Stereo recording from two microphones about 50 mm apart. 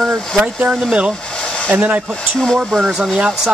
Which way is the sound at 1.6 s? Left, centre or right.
Right.